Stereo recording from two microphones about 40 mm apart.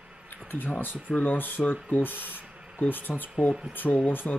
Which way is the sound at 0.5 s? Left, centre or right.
Left.